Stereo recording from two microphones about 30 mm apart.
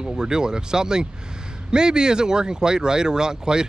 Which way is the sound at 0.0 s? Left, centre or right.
Right.